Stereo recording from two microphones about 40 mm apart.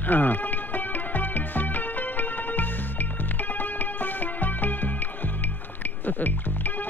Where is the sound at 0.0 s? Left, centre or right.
Left.